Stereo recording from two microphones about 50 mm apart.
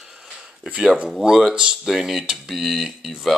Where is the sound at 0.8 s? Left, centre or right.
Centre.